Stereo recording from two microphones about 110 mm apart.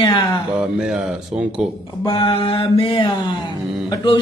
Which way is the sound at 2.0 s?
50° left (ahead or behind).